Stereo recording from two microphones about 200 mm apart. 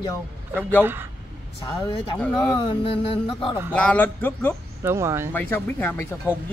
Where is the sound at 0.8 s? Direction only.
10° right (ahead or behind).